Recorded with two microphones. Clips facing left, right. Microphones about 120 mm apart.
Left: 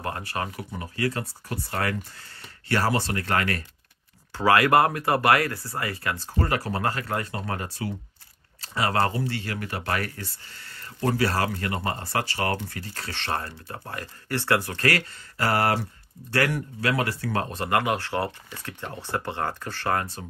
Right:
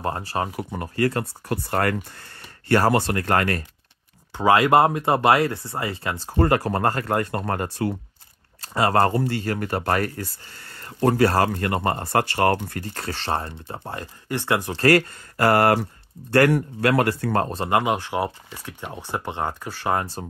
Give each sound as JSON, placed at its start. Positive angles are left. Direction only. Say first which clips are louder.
{"t": 0.0, "sound": "speech", "louder": "right 5 dB", "side_deg": -30}
{"t": 0.6, "sound": "speech", "louder": "right 6 dB", "side_deg": -50}
{"t": 4.3, "sound": "speech", "louder": "right 3 dB", "side_deg": -20}
{"t": 6.4, "sound": "speech", "louder": "right 6 dB", "side_deg": -45}
{"t": 14.8, "sound": "speech", "louder": "right 8 dB", "side_deg": -40}
{"t": 17.5, "sound": "speech", "louder": "right 3 dB", "side_deg": -25}